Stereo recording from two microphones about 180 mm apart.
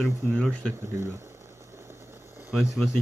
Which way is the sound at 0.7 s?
15° right (ahead or behind).